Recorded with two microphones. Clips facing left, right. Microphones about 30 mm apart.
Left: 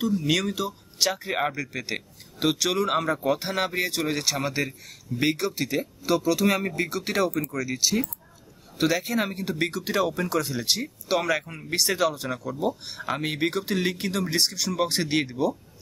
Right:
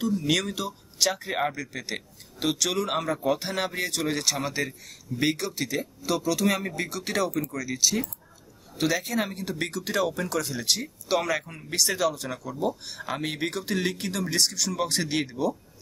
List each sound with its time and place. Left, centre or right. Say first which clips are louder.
0.3 s speech: left 1 dB; centre